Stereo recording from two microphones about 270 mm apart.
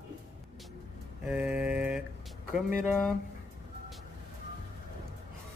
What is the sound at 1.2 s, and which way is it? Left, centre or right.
Mantra, centre.